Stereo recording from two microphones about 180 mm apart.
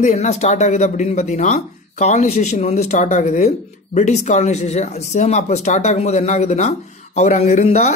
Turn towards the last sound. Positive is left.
turn(degrees=40)  # may be behind; listen again after turning